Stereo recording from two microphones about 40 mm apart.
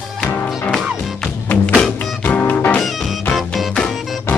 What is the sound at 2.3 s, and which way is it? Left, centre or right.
Music, left.